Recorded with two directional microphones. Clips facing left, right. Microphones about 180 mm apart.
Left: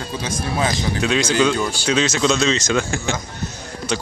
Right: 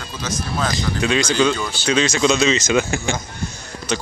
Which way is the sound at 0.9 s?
Centre (ahead or behind).